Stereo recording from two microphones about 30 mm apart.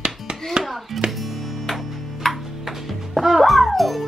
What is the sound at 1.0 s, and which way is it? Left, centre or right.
Music, centre.